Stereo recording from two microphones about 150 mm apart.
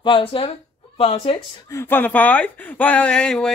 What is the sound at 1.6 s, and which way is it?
Speech, 15° left (ahead or behind).